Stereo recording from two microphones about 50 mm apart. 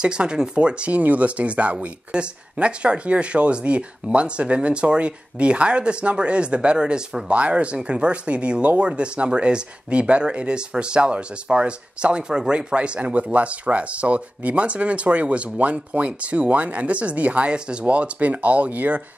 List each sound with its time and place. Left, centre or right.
0.0 s speech: centre